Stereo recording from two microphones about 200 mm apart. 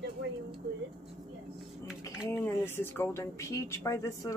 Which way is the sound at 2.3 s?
10° left (ahead or behind).